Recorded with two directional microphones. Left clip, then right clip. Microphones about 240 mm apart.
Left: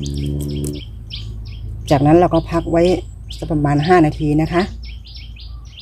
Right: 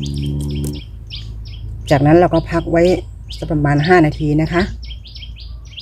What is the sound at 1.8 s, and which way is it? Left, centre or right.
Speech, centre.